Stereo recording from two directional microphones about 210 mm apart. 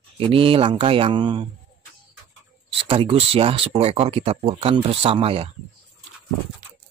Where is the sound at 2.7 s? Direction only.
25° right (ahead or behind).